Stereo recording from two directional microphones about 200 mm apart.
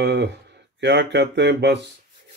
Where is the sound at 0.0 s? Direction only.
60° right (ahead or behind).